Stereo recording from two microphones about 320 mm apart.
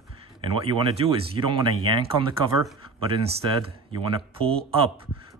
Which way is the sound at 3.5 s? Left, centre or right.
Centre.